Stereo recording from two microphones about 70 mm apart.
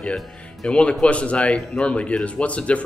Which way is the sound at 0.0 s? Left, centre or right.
Centre.